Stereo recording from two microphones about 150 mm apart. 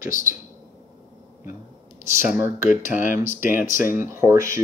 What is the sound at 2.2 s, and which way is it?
Speech, 15° right (ahead or behind).